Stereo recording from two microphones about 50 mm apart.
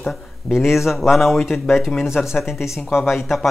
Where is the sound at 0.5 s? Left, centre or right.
Centre.